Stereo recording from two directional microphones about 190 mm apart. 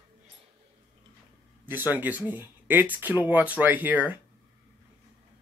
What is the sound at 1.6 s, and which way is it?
Speech, 10° right (ahead or behind).